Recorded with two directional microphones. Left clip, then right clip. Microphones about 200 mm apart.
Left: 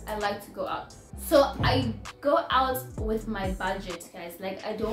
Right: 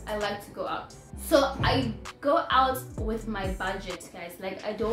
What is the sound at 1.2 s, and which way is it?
A woman's voice, 10° right (ahead or behind).